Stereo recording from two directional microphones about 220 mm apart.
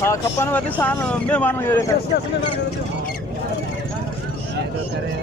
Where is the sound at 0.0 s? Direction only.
10° left (ahead or behind).